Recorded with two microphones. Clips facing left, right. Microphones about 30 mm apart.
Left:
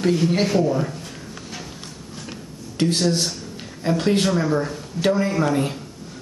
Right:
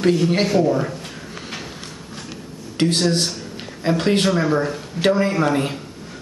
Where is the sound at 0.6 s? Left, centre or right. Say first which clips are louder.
Right 2 dB; centre.